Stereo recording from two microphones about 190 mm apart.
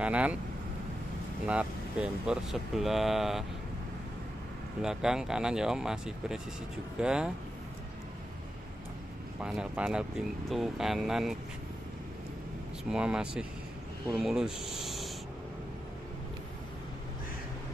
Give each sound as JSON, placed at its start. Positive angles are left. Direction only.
{"t": 0.0, "sound": "speech", "side_deg": -5}
{"t": 1.5, "sound": "speech", "side_deg": -5}
{"t": 4.8, "sound": "speech", "side_deg": -5}
{"t": 9.4, "sound": "speech", "side_deg": -5}
{"t": 12.9, "sound": "speech", "side_deg": -5}